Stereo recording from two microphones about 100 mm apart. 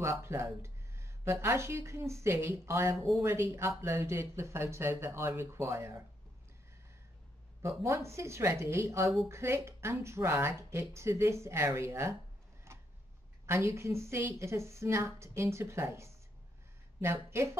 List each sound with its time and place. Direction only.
0.0 s speech: 25° right (ahead or behind)
7.6 s speech: 30° right (ahead or behind)
12.7 s a sound: 30° right (ahead or behind)
13.5 s speech: 25° right (ahead or behind)